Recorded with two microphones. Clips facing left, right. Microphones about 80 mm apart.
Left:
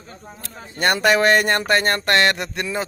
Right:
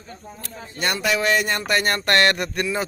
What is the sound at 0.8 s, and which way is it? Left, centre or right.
Speech, left.